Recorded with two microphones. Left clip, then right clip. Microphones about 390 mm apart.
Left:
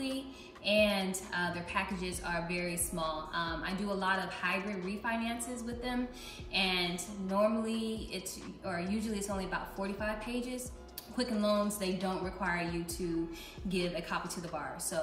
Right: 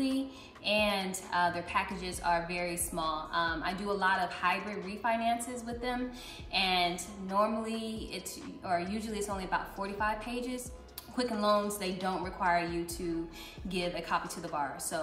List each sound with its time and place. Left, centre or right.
0.7 s a woman's voice: centre
6.5 s a woman's voice: centre